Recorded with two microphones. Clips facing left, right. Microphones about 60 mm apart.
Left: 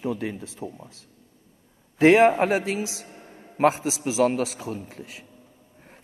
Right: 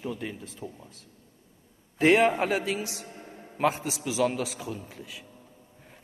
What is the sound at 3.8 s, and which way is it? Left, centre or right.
Speech, left.